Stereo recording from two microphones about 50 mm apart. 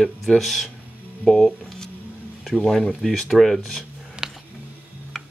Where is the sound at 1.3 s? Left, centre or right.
Centre.